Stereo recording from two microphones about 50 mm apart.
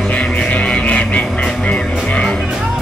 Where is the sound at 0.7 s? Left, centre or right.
Left.